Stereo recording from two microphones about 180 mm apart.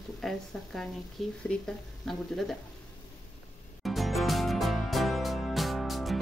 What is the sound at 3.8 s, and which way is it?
Music, centre (ahead or behind).